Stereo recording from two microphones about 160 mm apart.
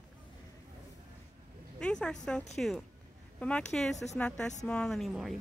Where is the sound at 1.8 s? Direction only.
5° left (ahead or behind).